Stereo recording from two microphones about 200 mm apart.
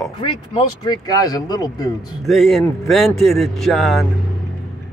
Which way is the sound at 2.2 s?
Centre (ahead or behind).